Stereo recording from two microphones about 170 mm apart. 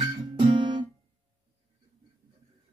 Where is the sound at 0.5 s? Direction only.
30° right (ahead or behind).